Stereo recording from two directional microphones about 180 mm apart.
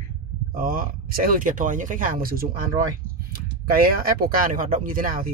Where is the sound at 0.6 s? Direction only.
50° right (ahead or behind).